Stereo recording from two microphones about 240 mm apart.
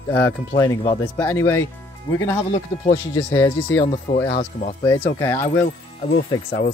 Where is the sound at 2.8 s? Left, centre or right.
Centre.